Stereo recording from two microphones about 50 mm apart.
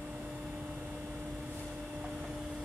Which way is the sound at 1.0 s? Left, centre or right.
Right.